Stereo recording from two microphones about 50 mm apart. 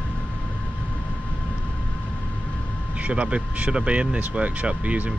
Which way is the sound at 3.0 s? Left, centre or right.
Right.